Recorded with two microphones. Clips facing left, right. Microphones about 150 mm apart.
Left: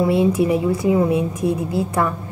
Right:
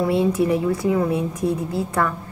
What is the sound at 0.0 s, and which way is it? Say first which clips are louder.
A woman's voice: left 2 dB; 10° left (ahead or behind).